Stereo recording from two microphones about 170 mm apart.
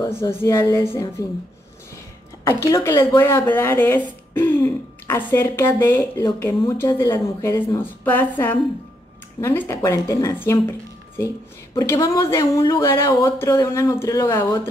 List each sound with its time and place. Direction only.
0.0 s speech: 15° left (ahead or behind)
2.4 s speech: 15° left (ahead or behind)